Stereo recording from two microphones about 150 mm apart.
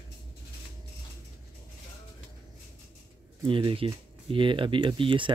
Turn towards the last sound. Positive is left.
turn(degrees=-35)  # may be behind; listen again after turning